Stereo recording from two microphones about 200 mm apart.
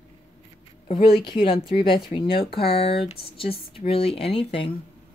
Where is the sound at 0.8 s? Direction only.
25° left (ahead or behind).